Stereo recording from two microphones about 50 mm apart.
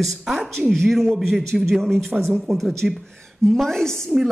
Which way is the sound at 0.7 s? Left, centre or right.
Centre.